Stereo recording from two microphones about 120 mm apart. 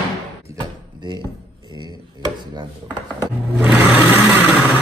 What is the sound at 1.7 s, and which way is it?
Chopping, 35° right (ahead or behind).